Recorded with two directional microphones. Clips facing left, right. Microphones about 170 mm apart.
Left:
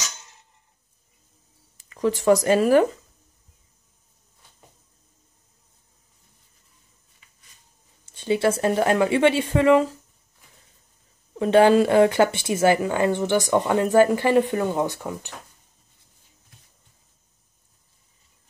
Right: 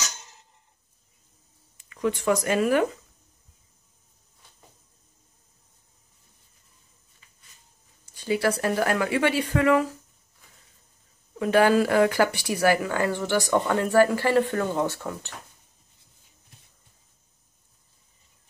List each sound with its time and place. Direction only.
1.8 s speech: 35° left (ahead or behind)
8.0 s speech: 25° left (ahead or behind)
11.3 s speech: 25° left (ahead or behind)